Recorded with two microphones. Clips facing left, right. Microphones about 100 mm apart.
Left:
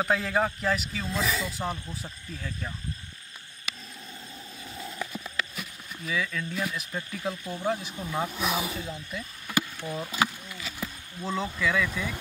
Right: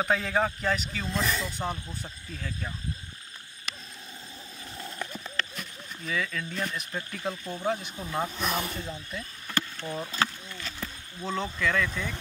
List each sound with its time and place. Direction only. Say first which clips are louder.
0.0 s a man's voice: even; centre (ahead or behind)
3.7 s a sound: even; centre (ahead or behind)
4.7 s speech: left 1 dB; centre (ahead or behind)